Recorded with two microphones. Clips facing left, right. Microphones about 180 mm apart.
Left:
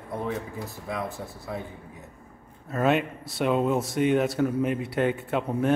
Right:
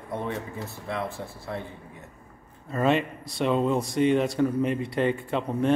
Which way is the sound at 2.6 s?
5° left (ahead or behind).